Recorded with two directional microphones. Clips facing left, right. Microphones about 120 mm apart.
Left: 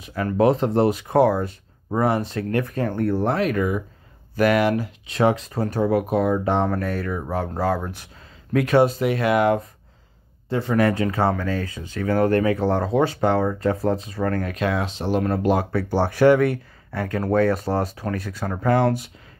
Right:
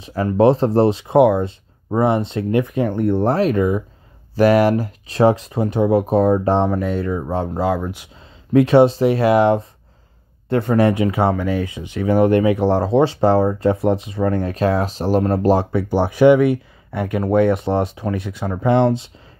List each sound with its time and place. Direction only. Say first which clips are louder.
0.0 s speech: right 4 dB; 30° right (ahead or behind); by 3.2 s 15° right (ahead or behind)
3.2 s speech: right 6 dB; 30° right (ahead or behind)
5.5 s speech: right 4 dB; 20° right (ahead or behind)
6.7 s speech: right 4 dB; 15° right (ahead or behind)
8.5 s speech: right 6 dB; 25° right (ahead or behind)
10.7 s speech: right 3 dB; 25° right (ahead or behind)
12.6 s speech: right 5 dB; 30° right (ahead or behind)
15.7 s speech: right 3 dB; 15° right (ahead or behind)